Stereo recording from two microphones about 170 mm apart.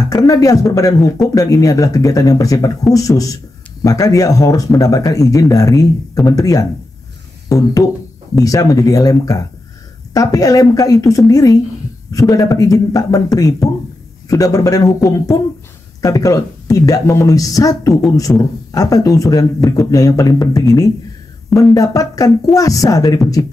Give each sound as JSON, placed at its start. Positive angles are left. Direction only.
{"t": 0.1, "sound": "speech", "side_deg": 20}
{"t": 7.4, "sound": "music", "side_deg": 20}
{"t": 8.4, "sound": "speech", "side_deg": 20}
{"t": 18.3, "sound": "speech", "side_deg": 5}
{"t": 18.7, "sound": "speech", "side_deg": 20}
{"t": 21.5, "sound": "speech", "side_deg": 0}
{"t": 21.7, "sound": "speech", "side_deg": 20}